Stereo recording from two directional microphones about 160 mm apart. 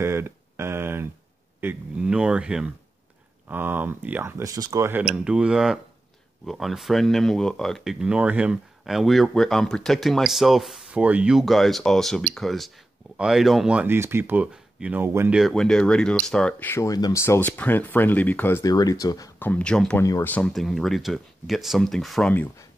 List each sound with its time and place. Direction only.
0.0 s a sound: 15° right (ahead or behind)
1.6 s speech: 10° right (ahead or behind)
15.3 s speech: centre (ahead or behind)
18.7 s speech: 25° left (ahead or behind)
19.5 s speech: 5° left (ahead or behind)
20.0 s speech: 15° left (ahead or behind)